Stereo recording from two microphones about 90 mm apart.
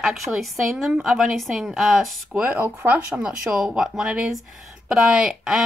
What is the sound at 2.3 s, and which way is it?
Speech, 15° right (ahead or behind).